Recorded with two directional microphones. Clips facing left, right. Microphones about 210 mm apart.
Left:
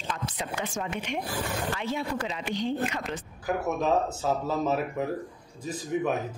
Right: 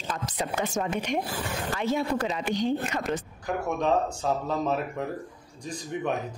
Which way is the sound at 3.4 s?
5° left (ahead or behind).